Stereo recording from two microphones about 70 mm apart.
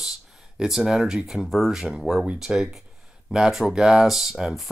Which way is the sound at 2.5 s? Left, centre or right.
Centre.